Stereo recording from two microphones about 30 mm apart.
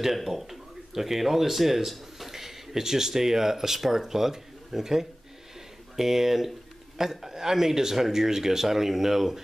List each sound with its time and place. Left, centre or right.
0.0 s speech: centre